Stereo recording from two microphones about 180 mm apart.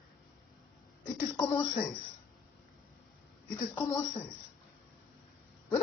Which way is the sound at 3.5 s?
15° left (ahead or behind).